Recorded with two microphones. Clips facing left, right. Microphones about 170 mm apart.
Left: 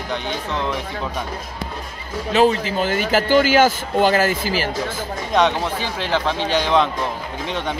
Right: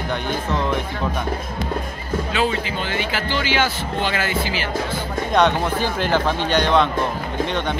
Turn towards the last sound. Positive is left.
turn(degrees=0)  # may be behind; listen again after turning